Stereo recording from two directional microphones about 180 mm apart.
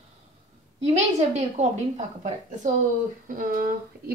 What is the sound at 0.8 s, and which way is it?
Speech, 35° right (ahead or behind).